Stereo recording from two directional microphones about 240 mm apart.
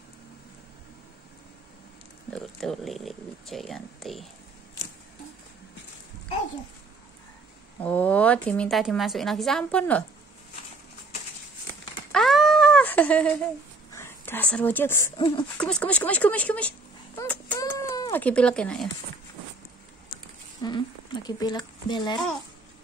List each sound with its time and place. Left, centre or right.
2.3 s a woman's voice: centre
7.8 s a woman's voice: centre
12.1 s cat: centre
13.9 s a woman's voice: centre
17.2 s a sound: centre
20.6 s speech: centre